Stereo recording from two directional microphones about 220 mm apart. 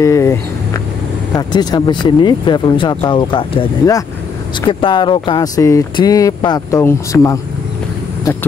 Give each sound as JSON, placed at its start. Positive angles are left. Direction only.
{"t": 0.0, "sound": "speech", "side_deg": 15}